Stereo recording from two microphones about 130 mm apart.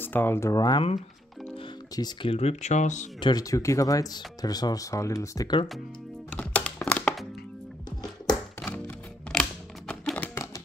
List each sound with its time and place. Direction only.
0.0 s speech: 15° left (ahead or behind); by 0.8 s 30° left (ahead or behind)
2.2 s speech: 55° left (ahead or behind)
3.2 s speech: 30° left (ahead or behind)
6.3 s music: 10° left (ahead or behind)
8.5 s music: 15° left (ahead or behind)